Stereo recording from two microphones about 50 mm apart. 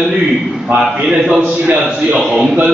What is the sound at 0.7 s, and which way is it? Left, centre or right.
Speech, right.